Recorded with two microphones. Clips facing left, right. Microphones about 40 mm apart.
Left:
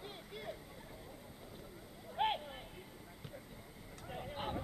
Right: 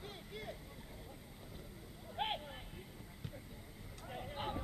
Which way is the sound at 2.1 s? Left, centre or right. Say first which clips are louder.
Left 4 dB; centre.